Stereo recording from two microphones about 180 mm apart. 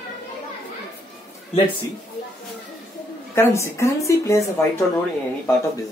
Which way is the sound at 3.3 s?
15° left (ahead or behind).